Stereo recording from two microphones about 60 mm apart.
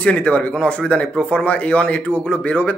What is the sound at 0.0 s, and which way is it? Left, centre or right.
A man's voice, centre.